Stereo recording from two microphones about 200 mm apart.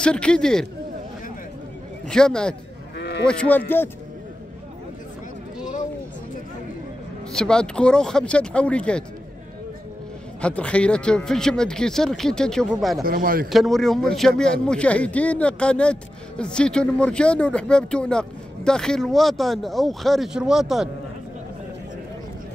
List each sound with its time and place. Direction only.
0.0 s speech: 5° left (ahead or behind)
2.0 s speech: 5° left (ahead or behind)
3.0 s cattle: 60° left (ahead or behind)
3.3 s speech: 5° left (ahead or behind)
7.3 s speech: 5° left (ahead or behind)
10.4 s speech: 5° left (ahead or behind)
13.0 s speech: 45° right (ahead or behind)
13.5 s speech: centre (ahead or behind)